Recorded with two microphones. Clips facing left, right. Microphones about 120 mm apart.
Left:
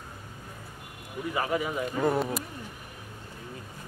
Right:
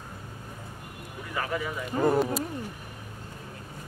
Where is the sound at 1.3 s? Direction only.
20° left (ahead or behind).